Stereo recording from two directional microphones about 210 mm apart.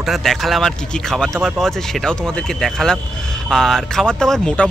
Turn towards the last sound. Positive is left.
turn(degrees=5)  # may be behind; listen again after turning